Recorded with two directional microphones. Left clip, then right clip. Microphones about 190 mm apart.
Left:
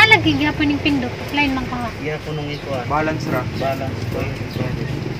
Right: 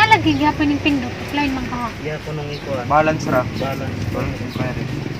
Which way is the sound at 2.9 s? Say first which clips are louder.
Right 6 dB; 45° right (ahead or behind).